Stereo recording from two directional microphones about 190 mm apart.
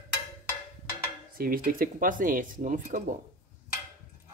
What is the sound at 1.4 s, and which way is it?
Speech, 50° right (ahead or behind).